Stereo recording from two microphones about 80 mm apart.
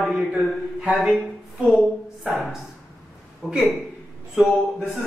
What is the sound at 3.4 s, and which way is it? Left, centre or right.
A man's voice, centre.